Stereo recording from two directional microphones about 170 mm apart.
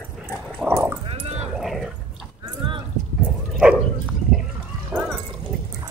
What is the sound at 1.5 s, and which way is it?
Dog, centre (ahead or behind).